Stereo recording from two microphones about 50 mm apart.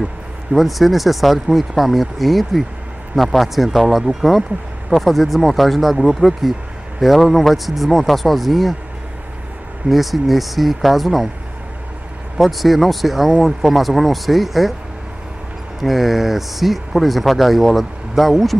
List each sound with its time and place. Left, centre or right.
0.5 s speech: centre
9.8 s speech: centre
12.4 s speech: centre
15.8 s speech: centre